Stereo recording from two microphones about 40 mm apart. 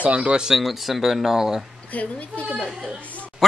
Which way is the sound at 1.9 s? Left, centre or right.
Left.